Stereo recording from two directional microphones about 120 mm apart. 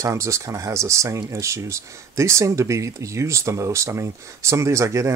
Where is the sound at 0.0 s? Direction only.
25° right (ahead or behind).